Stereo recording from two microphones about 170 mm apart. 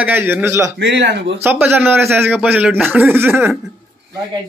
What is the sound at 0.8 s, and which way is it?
Speech, 90° right.